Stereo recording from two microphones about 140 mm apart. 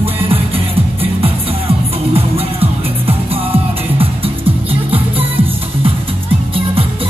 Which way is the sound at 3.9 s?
40° right (ahead or behind).